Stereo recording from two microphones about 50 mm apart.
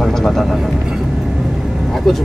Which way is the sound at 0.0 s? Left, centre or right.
Centre.